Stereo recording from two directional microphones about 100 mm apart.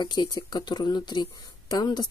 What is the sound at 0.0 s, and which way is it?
Speech, 45° left (ahead or behind).